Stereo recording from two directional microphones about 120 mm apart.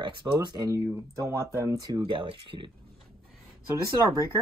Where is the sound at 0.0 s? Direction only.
40° right (ahead or behind).